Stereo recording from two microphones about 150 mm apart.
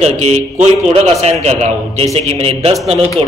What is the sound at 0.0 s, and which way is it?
Speech, 50° right (ahead or behind).